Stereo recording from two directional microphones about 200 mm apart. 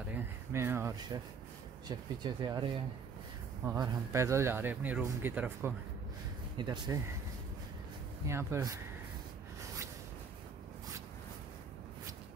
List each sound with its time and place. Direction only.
0.1 s speech: 10° right (ahead or behind)
3.6 s speech: 15° right (ahead or behind)
6.6 s speech: 20° right (ahead or behind)
8.3 s speech: 15° right (ahead or behind)